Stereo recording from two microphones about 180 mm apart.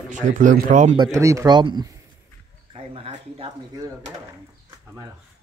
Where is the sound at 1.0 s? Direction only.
15° right (ahead or behind); by 3.5 s 35° right (ahead or behind).